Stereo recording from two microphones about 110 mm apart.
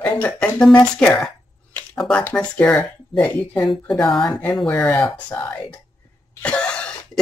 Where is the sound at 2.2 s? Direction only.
20° left (ahead or behind).